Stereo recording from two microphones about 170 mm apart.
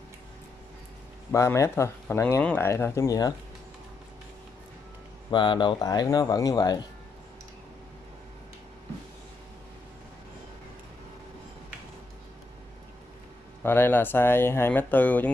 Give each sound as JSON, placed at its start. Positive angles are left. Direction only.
{"t": 1.3, "sound": "speech", "side_deg": 15}
{"t": 5.3, "sound": "speech", "side_deg": 30}
{"t": 13.6, "sound": "speech", "side_deg": 10}